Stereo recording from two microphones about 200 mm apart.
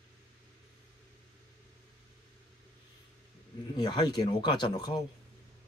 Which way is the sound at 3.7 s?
20° left (ahead or behind).